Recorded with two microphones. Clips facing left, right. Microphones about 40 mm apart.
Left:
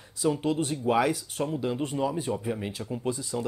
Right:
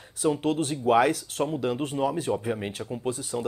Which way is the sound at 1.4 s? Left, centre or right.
Centre.